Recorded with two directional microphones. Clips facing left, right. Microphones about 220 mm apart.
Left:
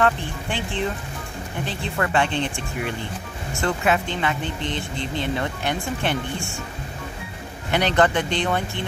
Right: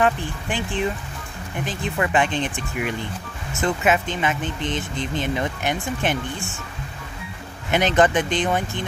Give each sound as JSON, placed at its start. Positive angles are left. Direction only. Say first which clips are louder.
{"t": 0.0, "sound": "speech", "louder": "right 1 dB", "side_deg": -15}
{"t": 7.7, "sound": "speech", "louder": "right 2 dB", "side_deg": -15}